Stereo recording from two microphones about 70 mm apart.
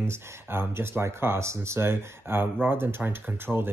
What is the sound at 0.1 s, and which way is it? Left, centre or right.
Speech, right.